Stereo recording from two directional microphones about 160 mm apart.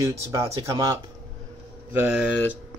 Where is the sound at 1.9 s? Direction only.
10° right (ahead or behind).